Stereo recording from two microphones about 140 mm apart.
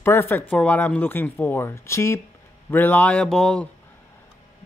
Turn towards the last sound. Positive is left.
turn(degrees=5)  # may be behind; listen again after turning